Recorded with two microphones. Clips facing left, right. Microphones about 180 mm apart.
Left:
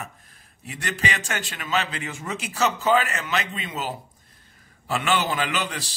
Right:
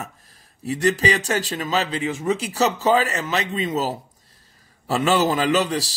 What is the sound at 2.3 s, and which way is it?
Speech, 35° right (ahead or behind).